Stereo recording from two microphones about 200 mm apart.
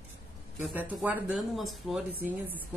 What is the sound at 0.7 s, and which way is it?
Speech, 10° right (ahead or behind).